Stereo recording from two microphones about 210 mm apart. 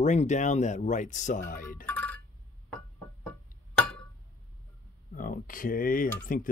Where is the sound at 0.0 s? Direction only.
35° left (ahead or behind).